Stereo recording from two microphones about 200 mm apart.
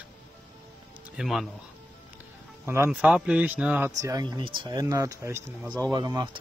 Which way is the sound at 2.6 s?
10° right (ahead or behind).